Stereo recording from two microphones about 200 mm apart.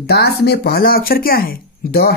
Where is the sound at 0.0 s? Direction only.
55° left (ahead or behind).